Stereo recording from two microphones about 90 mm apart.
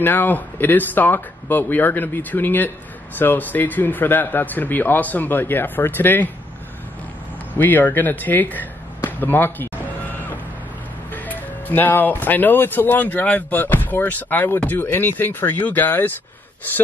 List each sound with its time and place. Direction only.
0.0 s speech: 20° left (ahead or behind)
7.5 s speech: 20° left (ahead or behind)
11.1 s speech: 20° left (ahead or behind)